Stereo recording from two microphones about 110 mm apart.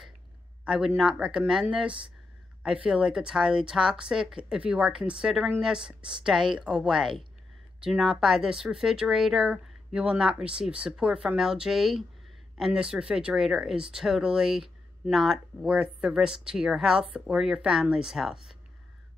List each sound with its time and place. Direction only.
0.7 s a woman's voice: 5° right (ahead or behind)